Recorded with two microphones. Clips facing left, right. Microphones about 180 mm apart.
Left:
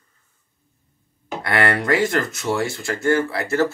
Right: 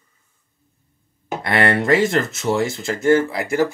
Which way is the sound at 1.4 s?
20° right (ahead or behind).